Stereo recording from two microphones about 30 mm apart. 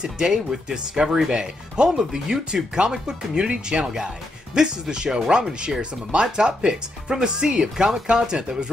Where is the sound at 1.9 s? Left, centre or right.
Centre.